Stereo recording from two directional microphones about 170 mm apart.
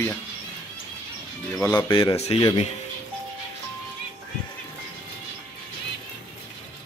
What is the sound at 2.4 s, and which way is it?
Speech, 25° left (ahead or behind).